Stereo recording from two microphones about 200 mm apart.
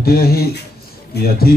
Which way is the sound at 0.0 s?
50° left (ahead or behind).